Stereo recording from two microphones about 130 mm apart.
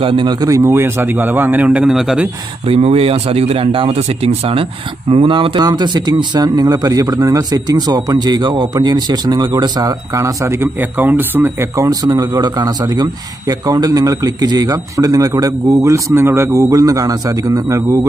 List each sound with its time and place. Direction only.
0.0 s speech: 40° right (ahead or behind); by 2.2 s 5° right (ahead or behind)
2.6 s speech: 50° right (ahead or behind); by 18.0 s 25° right (ahead or behind)